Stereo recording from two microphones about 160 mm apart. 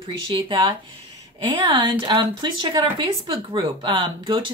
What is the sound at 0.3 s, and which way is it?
Speech, 30° right (ahead or behind).